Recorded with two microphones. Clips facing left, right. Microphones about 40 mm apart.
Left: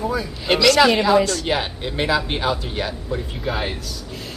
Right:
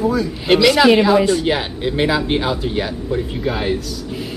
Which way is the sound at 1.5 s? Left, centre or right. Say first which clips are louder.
Right 3 dB; centre.